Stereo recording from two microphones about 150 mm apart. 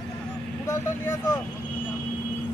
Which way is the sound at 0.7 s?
25° left (ahead or behind).